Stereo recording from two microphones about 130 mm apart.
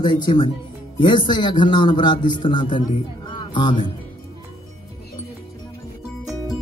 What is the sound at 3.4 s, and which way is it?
Music, 35° left (ahead or behind).